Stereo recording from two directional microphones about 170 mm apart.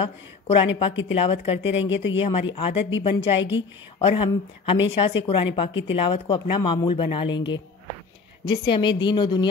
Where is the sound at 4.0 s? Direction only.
35° left (ahead or behind).